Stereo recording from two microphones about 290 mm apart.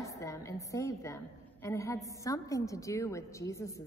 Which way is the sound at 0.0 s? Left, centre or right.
Centre.